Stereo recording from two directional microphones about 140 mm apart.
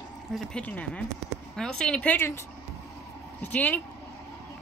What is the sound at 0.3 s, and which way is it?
Speech, 5° left (ahead or behind).